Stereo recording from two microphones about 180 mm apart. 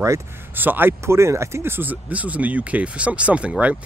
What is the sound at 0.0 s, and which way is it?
Speech, 15° right (ahead or behind).